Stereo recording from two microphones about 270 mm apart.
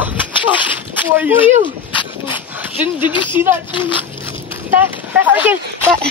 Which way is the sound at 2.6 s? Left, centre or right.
Centre.